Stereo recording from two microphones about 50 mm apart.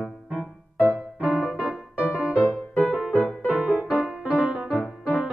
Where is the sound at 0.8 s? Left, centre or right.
Right.